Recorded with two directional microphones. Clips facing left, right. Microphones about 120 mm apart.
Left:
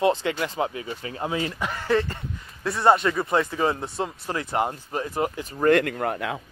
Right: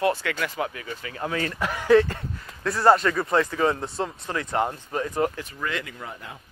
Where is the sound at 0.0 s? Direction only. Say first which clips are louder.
Left 2 dB; 25° left (ahead or behind).